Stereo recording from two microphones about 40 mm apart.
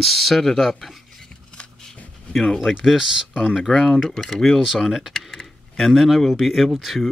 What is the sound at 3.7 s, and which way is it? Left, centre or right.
Speech, centre.